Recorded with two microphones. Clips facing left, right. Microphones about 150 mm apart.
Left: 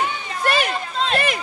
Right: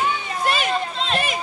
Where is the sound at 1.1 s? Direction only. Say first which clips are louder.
Left 2 dB; 65° left (ahead or behind).